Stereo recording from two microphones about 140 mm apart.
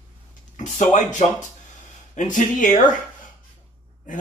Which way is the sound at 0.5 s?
60° left (ahead or behind).